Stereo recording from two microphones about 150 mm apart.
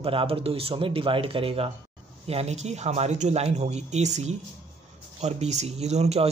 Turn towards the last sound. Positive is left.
turn(degrees=-45)  # may be behind; listen again after turning